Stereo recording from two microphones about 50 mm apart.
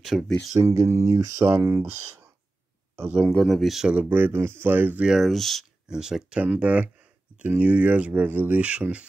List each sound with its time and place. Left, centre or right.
0.0 s speech: centre
0.6 s speech: right
1.5 s speech: right
3.4 s speech: centre
3.9 s speech: right
5.0 s speech: centre
5.3 s speech: centre
5.9 s speech: centre
6.4 s speech: right